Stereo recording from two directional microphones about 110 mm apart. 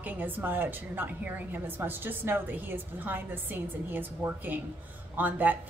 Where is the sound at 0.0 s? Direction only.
15° right (ahead or behind).